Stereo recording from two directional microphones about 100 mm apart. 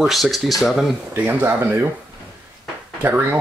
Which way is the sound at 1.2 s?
20° right (ahead or behind).